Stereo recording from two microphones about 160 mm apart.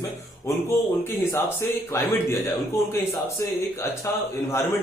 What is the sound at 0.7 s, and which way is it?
A man's voice, 15° left (ahead or behind).